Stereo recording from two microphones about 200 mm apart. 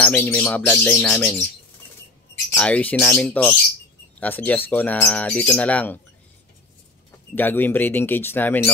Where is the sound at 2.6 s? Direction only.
5° left (ahead or behind).